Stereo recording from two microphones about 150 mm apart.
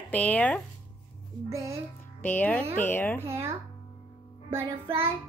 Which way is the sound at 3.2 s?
15° right (ahead or behind).